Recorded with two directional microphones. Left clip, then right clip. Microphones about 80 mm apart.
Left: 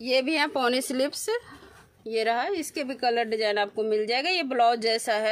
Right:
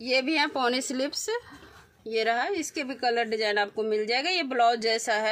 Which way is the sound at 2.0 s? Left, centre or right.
Left.